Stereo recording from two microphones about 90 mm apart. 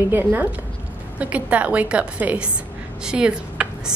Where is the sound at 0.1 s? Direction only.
20° right (ahead or behind).